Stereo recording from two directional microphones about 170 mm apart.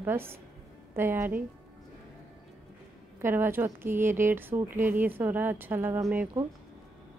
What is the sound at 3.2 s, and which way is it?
A woman's voice, 15° right (ahead or behind).